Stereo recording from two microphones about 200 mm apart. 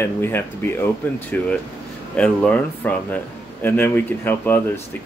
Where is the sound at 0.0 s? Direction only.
10° left (ahead or behind).